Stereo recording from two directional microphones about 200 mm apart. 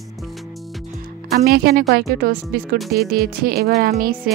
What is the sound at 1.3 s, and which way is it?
Speech, 50° right (ahead or behind).